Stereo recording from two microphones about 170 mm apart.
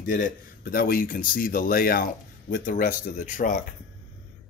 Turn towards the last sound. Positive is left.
turn(degrees=50)  # may be behind; listen again after turning